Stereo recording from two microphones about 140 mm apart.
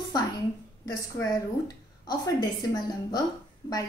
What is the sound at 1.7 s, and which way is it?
A woman's voice, 25° left (ahead or behind).